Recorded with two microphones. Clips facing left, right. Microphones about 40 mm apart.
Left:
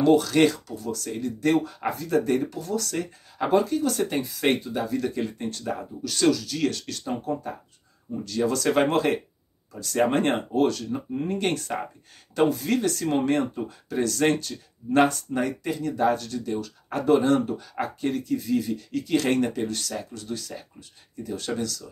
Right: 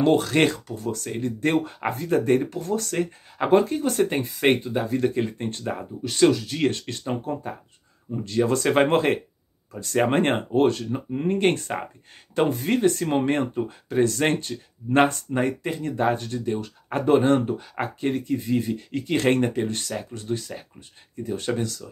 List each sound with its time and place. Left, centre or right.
0.0 s speech: right